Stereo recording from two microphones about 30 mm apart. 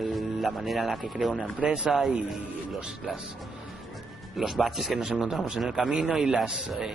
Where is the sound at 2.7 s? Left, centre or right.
Right.